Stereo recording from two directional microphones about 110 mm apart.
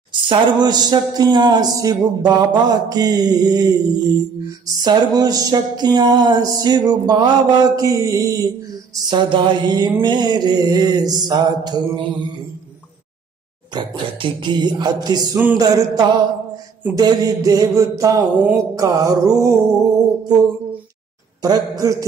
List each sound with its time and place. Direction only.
0.1 s speech: 45° right (ahead or behind); by 8.5 s 30° right (ahead or behind)
9.1 s mantra: 45° right (ahead or behind)
10.0 s speech: 45° right (ahead or behind)
13.7 s speech: 45° right (ahead or behind)
21.4 s speech: 35° right (ahead or behind)